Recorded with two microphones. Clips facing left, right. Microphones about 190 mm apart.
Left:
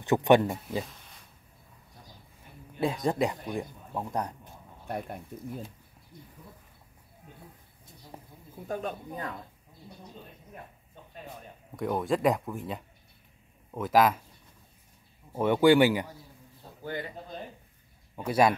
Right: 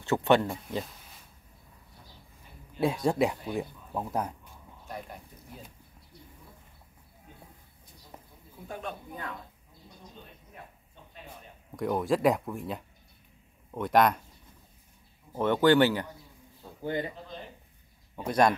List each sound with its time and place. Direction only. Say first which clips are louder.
0.0 s speech: left 3 dB; 15° left (ahead or behind)
0.7 s speech: left 1 dB; centre (ahead or behind)
2.8 s speech: right 1 dB; centre (ahead or behind)
4.8 s speech: left 6 dB; 60° left (ahead or behind)
8.6 s speech: left 5 dB; 40° left (ahead or behind)
11.7 s speech: right 1 dB; centre (ahead or behind)
15.3 s speech: left 1 dB; 10° left (ahead or behind)
18.1 s speech: even; 5° left (ahead or behind)